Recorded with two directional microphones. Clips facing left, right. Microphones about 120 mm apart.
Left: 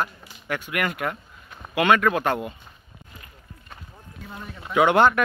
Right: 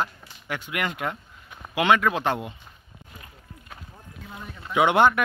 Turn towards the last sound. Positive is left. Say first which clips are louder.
# left 1 dB
turn(degrees=-15)  # may be behind; listen again after turning